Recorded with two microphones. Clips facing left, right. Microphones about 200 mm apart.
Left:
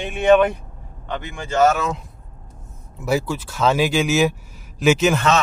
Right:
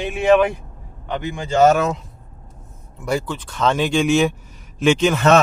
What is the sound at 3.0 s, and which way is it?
Speech, 5° left (ahead or behind).